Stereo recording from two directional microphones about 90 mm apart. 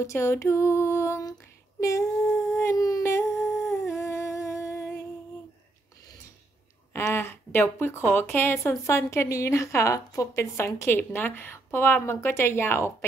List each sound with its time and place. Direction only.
0.0 s a woman's voice: 30° left (ahead or behind)
2.5 s howl: 35° left (ahead or behind)
3.0 s humming: 30° left (ahead or behind)
3.3 s humming: centre (ahead or behind)
3.8 s humming: 30° left (ahead or behind)
6.9 s a woman's voice: 25° left (ahead or behind)